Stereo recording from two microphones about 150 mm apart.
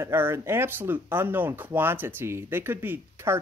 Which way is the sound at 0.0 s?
15° right (ahead or behind).